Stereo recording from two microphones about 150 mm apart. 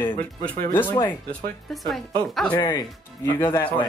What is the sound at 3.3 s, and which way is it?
Speech, 15° left (ahead or behind).